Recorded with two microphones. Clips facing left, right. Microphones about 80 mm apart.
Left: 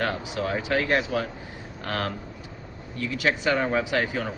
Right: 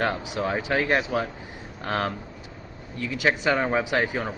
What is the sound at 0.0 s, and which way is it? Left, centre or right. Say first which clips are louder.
A man's voice: right 1 dB; right.